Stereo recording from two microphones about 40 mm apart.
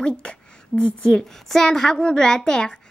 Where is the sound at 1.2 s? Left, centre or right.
Centre.